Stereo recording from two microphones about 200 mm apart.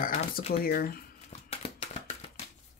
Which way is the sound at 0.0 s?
45° left (ahead or behind).